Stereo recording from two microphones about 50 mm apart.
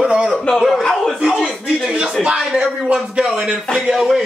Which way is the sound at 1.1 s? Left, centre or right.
Centre.